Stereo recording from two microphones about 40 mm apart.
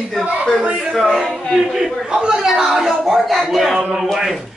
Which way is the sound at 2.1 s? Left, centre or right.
Centre.